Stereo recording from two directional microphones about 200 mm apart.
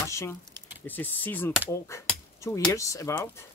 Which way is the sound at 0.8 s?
10° left (ahead or behind).